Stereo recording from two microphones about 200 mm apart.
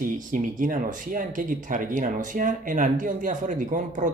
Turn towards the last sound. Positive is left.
turn(degrees=-40)  # may be behind; listen again after turning